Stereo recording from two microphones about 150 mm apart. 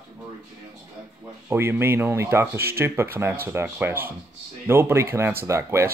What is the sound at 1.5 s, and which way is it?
Speech, 15° right (ahead or behind).